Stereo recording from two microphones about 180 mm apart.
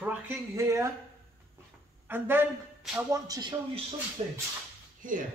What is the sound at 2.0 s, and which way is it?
Speech, 10° right (ahead or behind).